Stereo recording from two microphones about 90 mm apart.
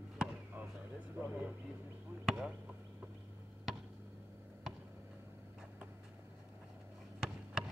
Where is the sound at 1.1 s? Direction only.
20° right (ahead or behind).